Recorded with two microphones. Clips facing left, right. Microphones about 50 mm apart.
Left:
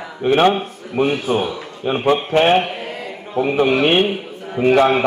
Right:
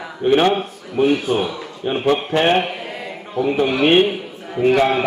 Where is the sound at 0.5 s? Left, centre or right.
Left.